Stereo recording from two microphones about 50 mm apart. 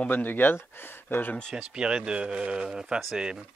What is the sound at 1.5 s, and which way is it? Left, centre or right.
A man's voice, centre.